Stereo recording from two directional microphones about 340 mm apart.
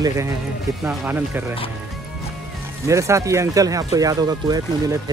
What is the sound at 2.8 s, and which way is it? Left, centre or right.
Speech, centre.